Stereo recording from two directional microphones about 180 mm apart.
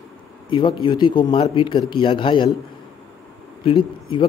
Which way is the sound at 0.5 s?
25° left (ahead or behind).